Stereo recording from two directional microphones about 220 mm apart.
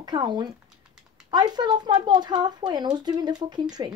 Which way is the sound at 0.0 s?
20° right (ahead or behind).